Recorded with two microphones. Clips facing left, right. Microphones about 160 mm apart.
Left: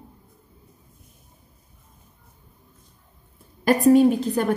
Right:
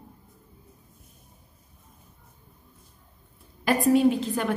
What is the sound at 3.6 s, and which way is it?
Speech, 45° left (ahead or behind).